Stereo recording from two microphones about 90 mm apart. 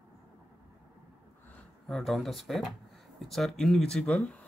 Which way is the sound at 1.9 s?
Centre (ahead or behind).